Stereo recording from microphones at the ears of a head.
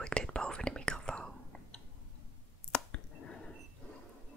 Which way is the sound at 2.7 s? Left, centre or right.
Left.